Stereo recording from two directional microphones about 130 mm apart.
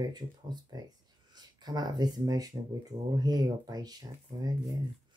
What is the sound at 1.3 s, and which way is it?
Speech, 30° right (ahead or behind).